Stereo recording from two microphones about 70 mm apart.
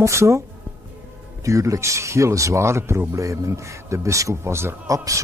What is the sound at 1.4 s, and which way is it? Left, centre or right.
A man's voice, right.